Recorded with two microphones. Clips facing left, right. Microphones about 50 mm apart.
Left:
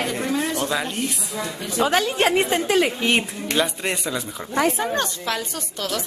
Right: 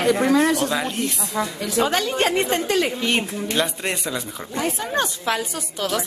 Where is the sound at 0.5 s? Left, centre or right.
Centre.